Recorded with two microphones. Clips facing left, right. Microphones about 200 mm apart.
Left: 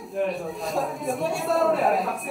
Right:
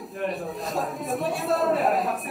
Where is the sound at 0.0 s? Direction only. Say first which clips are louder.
Left 3 dB; centre (ahead or behind).